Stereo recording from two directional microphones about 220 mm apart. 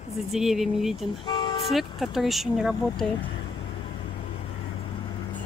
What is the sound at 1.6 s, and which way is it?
Speech, centre (ahead or behind).